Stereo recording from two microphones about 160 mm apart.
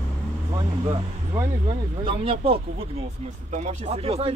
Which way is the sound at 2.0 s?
35° right (ahead or behind).